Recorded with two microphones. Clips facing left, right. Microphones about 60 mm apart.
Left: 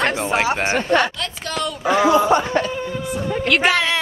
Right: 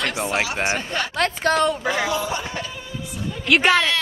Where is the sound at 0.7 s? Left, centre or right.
Left.